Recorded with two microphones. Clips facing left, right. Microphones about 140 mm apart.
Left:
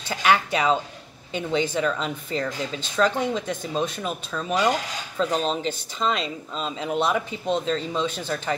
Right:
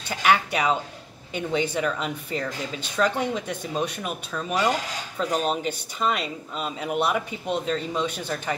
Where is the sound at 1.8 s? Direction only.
10° right (ahead or behind).